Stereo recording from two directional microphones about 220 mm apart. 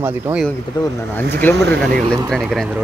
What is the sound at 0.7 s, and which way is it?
Speech, 20° left (ahead or behind).